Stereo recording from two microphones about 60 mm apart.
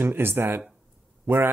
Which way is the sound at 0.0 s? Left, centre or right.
Right.